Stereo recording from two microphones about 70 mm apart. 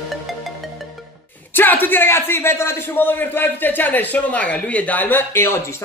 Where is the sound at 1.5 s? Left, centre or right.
Left.